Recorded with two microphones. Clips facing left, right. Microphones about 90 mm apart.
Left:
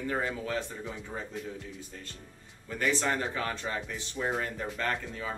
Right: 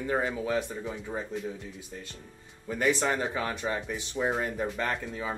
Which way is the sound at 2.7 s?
15° right (ahead or behind).